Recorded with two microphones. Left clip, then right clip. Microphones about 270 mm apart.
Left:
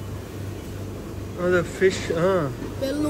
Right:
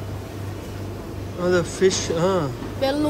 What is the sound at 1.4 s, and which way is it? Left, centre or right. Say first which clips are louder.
Speech: right 1 dB; centre.